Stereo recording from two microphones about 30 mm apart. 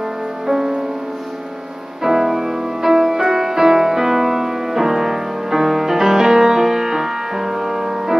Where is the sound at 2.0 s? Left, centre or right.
Centre.